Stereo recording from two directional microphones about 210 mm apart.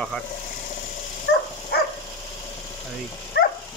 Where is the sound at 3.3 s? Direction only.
50° left (ahead or behind).